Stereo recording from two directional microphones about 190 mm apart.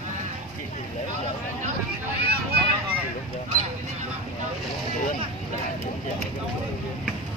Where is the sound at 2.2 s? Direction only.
55° right (ahead or behind).